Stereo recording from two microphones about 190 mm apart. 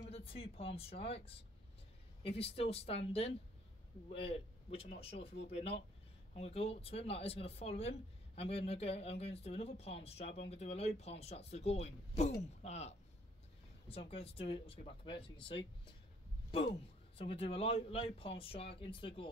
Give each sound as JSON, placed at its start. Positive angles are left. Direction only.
{"t": 0.0, "sound": "speech", "side_deg": 30}
{"t": 17.2, "sound": "speech", "side_deg": 30}